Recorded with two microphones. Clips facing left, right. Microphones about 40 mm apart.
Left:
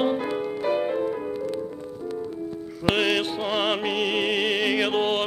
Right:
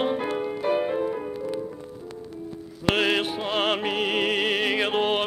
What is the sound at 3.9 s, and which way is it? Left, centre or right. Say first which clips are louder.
Music: even; centre.